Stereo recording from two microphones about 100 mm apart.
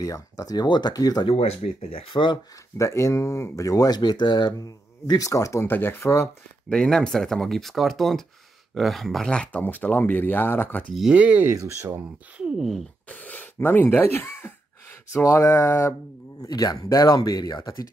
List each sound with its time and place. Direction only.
0.0 s speech: 35° left (ahead or behind)
1.2 s speech: 90° left; by 2.3 s 60° left (ahead or behind)
2.8 s speech: 30° left (ahead or behind)
6.7 s speech: 5° left (ahead or behind)
11.0 s speech: 10° right (ahead or behind)
11.5 s speech: 30° right (ahead or behind)
12.4 s speech: 5° right (ahead or behind)
13.1 s speech: 15° left (ahead or behind); by 17.8 s 40° left (ahead or behind)